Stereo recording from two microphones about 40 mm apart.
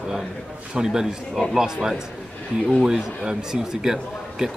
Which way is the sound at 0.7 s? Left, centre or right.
Centre.